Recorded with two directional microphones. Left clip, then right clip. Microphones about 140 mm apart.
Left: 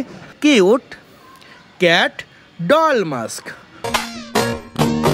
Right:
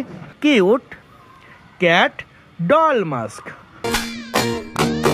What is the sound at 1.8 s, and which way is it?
Speech, 45° left (ahead or behind).